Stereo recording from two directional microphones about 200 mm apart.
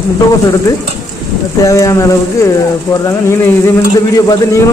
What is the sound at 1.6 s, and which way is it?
Speech, 15° left (ahead or behind).